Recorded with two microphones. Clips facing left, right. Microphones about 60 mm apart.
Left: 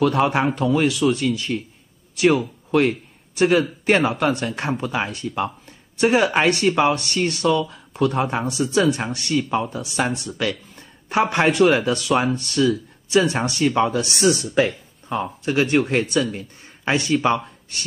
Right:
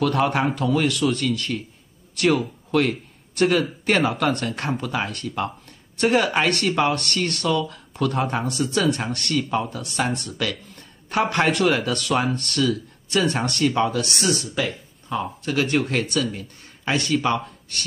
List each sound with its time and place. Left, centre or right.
0.0 s a man's voice: centre
14.5 s speech: left
15.4 s speech: centre